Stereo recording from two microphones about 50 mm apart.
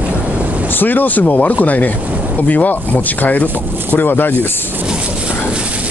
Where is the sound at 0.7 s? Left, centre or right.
Left.